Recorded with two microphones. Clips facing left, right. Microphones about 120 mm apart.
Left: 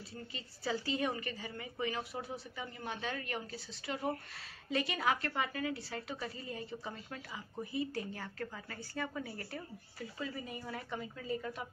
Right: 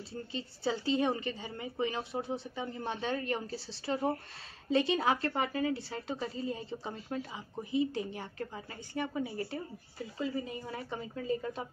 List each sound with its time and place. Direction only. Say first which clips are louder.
0.1 s speech: right 7 dB; 30° right (ahead or behind)